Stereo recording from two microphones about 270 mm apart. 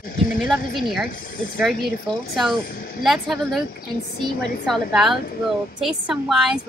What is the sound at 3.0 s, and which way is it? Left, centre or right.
Speech, centre.